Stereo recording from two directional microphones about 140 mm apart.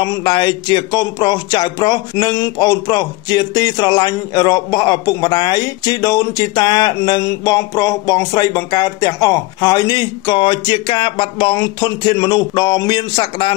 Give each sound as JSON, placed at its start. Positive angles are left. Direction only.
{"t": 0.0, "sound": "speech", "side_deg": 30}